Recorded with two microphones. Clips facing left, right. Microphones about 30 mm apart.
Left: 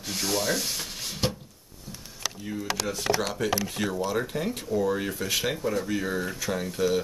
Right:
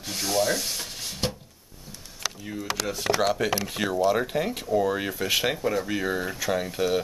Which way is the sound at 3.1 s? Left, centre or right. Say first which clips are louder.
Right 4 dB; right.